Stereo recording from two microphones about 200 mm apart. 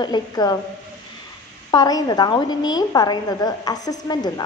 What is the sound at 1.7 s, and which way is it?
A woman's voice, 20° left (ahead or behind).